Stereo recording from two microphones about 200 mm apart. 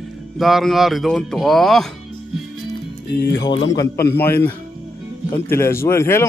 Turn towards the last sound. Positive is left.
turn(degrees=15)  # may be behind; listen again after turning